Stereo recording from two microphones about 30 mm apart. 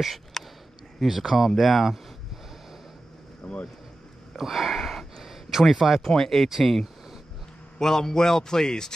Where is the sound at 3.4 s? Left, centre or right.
Left.